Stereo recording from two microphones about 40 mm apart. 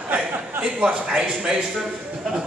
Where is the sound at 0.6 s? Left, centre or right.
Centre.